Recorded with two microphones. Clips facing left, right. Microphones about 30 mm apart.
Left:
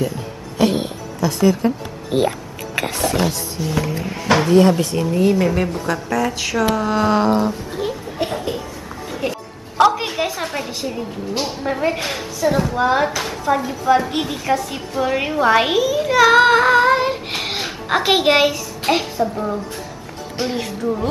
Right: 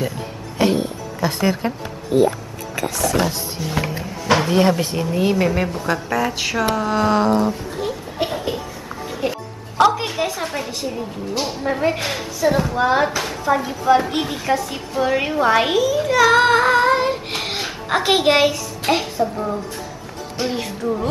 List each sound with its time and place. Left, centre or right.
1.2 s speech: right
2.1 s speech: left
3.2 s a woman's voice: centre
8.3 s a woman's voice: centre
20.3 s a woman's voice: centre